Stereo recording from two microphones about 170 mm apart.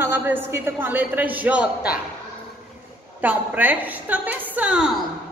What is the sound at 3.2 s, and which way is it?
A woman's voice, 10° right (ahead or behind).